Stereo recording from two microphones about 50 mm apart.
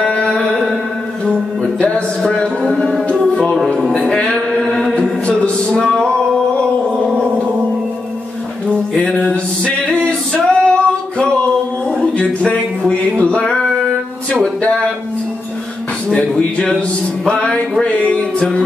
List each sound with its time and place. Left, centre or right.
0.0 s music: centre
4.1 s music: centre
8.9 s music: left
11.9 s a sound: left
16.2 s a sound: left
17.3 s music: centre